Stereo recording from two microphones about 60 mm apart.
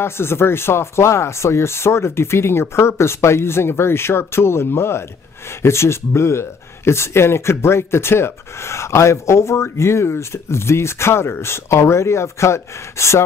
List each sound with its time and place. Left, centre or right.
0.0 s speech: left